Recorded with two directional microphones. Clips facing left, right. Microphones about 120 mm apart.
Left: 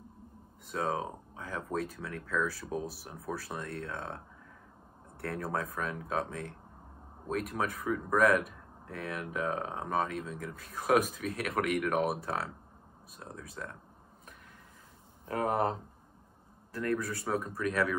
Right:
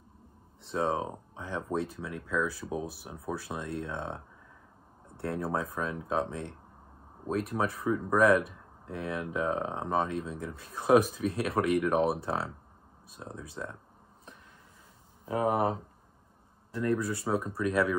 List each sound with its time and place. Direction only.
0.7 s speech: 25° right (ahead or behind)
15.2 s speech: 10° right (ahead or behind)
16.7 s speech: 20° right (ahead or behind)